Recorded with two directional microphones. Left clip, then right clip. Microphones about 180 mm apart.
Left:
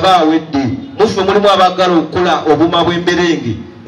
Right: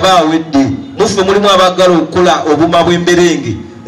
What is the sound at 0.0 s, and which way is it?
A man's voice, 55° right (ahead or behind).